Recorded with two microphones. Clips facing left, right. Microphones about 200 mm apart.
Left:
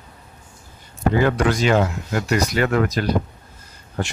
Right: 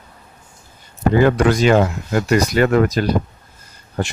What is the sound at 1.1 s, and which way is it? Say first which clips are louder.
Speech: right 5 dB; 45° right (ahead or behind).